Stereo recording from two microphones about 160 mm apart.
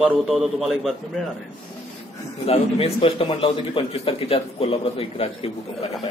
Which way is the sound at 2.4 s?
40° left (ahead or behind).